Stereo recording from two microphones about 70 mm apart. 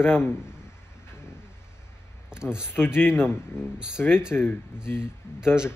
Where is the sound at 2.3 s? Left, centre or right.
Centre.